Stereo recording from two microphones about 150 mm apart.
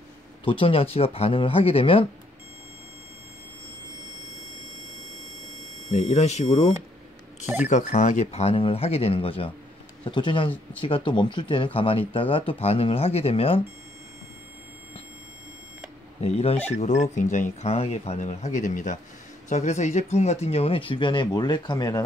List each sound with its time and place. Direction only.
0.5 s speech: 40° left (ahead or behind)
5.9 s speech: 50° left (ahead or behind)
16.2 s speech: 45° left (ahead or behind); by 22.0 s 25° left (ahead or behind)